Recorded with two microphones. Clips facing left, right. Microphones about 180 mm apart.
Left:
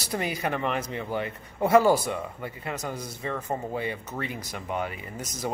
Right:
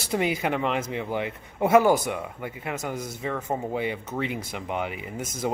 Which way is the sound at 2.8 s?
20° right (ahead or behind).